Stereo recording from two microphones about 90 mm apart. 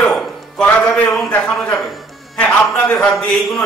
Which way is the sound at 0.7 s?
20° left (ahead or behind).